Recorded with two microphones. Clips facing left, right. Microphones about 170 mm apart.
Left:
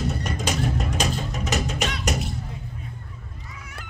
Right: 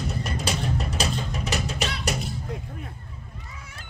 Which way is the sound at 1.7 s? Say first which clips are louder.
Left 2 dB; 35° right (ahead or behind).